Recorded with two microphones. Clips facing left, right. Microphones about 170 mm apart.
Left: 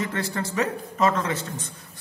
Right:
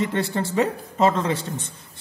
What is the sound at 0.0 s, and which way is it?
A man's voice, 25° right (ahead or behind).